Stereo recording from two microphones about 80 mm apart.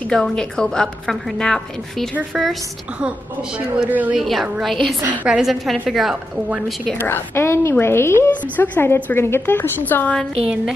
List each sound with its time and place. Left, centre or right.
0.1 s a woman's voice: centre
3.5 s speech: centre
4.2 s a woman's voice: centre
5.2 s speech: centre
5.5 s a woman's voice: centre
7.0 s a woman's voice: left
10.4 s speech: centre